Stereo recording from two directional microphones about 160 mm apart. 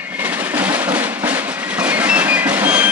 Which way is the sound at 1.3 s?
10° right (ahead or behind).